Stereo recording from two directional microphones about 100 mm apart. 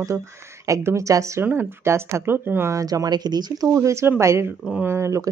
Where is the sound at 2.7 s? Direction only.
35° right (ahead or behind).